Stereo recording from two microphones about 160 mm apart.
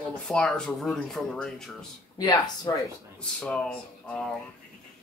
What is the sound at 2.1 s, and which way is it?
Speech, 25° left (ahead or behind).